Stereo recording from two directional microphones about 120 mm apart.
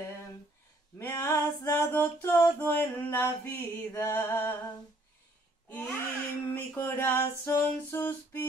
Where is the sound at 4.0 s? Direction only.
20° left (ahead or behind).